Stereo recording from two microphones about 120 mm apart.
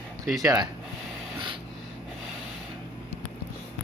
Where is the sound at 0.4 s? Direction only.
30° right (ahead or behind).